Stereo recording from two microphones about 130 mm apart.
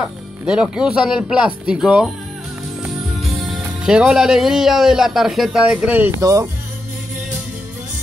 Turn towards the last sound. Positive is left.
turn(degrees=-25)  # may be behind; listen again after turning